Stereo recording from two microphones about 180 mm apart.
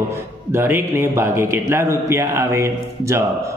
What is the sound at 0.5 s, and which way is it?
A man's voice, 15° right (ahead or behind).